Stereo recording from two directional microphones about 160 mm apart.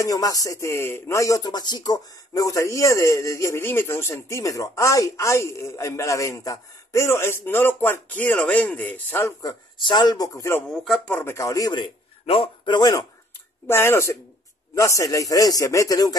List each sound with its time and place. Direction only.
0.0 s speech: 20° left (ahead or behind)
10.7 s speech: centre (ahead or behind)
11.1 s speech: 15° left (ahead or behind)